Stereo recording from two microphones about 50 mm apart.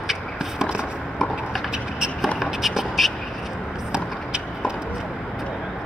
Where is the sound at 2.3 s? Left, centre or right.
Centre.